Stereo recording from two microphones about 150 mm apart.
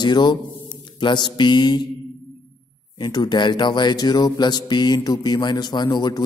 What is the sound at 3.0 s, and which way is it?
Speech, 30° left (ahead or behind).